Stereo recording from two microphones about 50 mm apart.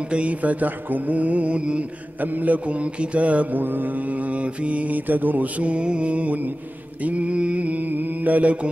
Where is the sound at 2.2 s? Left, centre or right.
Right.